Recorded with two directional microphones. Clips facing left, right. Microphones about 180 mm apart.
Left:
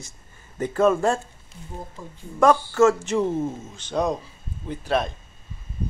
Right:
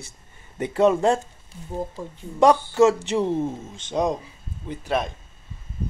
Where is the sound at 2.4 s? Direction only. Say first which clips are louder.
Right 1 dB; 15° right (ahead or behind).